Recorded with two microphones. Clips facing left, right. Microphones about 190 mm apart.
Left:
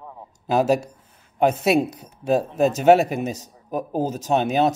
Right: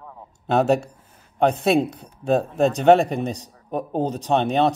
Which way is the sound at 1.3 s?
5° left (ahead or behind).